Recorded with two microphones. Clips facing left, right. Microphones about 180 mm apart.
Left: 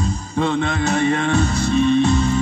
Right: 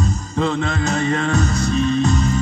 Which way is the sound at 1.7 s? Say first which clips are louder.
Left 4 dB; 40° right (ahead or behind).